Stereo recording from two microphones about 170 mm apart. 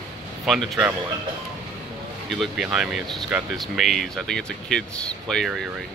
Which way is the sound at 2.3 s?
Centre (ahead or behind).